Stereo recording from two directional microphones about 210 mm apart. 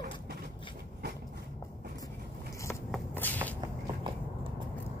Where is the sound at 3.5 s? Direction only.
20° right (ahead or behind).